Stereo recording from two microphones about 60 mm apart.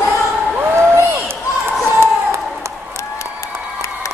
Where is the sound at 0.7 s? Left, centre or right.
Right.